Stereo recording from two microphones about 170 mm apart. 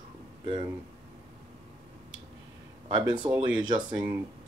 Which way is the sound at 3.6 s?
25° right (ahead or behind).